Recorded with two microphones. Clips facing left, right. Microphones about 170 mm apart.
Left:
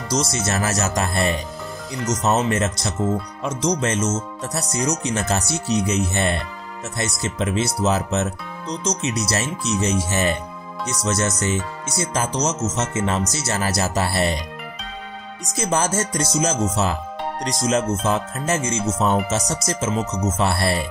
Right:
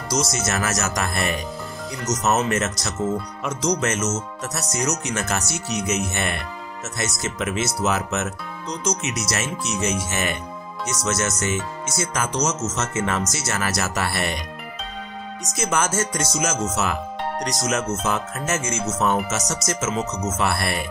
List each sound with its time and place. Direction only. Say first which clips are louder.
0.3 s speech: left 1 dB; 30° left (ahead or behind)
15.5 s speech: left 2 dB; 35° left (ahead or behind)